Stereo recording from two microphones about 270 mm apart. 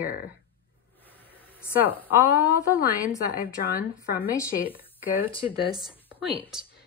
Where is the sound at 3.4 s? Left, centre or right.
Left.